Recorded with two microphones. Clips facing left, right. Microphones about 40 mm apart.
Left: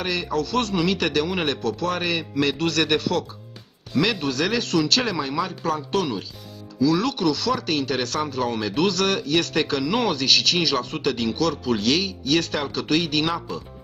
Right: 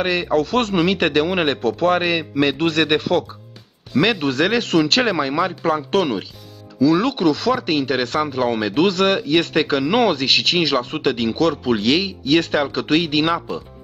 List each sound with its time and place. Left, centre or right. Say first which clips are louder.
0.0 s speech: right 6 dB; right